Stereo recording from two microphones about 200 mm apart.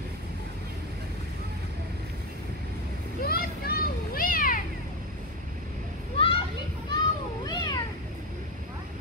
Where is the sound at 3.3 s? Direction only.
50° left (ahead or behind).